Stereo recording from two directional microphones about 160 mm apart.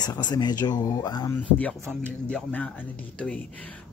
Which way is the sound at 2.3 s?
10° left (ahead or behind).